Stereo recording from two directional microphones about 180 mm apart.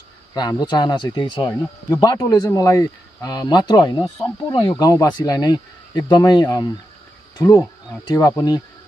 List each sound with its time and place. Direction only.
0.3 s speech: 20° left (ahead or behind)